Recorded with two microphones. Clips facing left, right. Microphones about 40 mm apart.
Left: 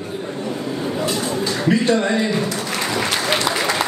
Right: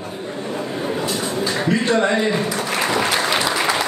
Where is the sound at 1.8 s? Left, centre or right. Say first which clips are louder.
Even; right.